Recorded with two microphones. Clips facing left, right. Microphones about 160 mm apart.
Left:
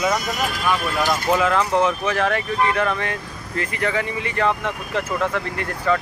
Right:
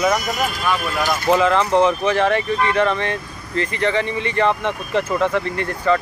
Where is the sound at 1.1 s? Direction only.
5° left (ahead or behind).